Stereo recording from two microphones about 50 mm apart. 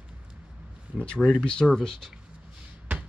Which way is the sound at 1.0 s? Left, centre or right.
Left.